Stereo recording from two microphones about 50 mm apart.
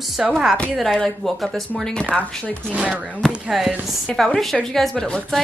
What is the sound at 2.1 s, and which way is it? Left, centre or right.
Speech, centre.